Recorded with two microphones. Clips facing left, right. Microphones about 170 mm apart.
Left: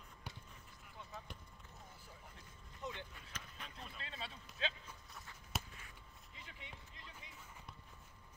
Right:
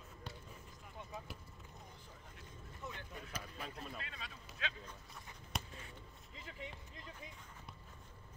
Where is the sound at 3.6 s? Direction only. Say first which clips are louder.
Right 5 dB; 45° right (ahead or behind).